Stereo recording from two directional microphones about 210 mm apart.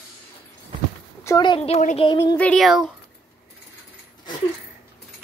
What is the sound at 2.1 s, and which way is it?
Speech, 10° left (ahead or behind).